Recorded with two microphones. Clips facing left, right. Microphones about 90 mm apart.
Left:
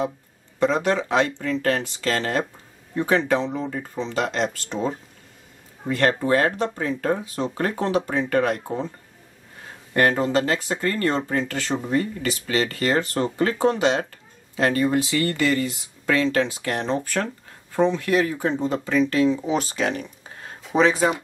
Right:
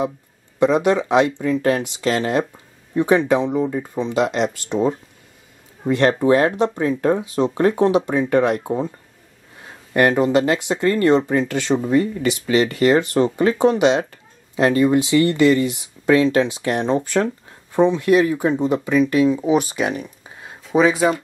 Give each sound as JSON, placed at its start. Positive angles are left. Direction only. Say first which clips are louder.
{"t": 0.6, "sound": "speech", "louder": "right 5 dB", "side_deg": -15}
{"t": 9.9, "sound": "speech", "louder": "right 4 dB", "side_deg": -20}